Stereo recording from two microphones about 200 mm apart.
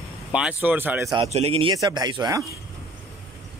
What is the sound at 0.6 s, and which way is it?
Speech, 10° right (ahead or behind).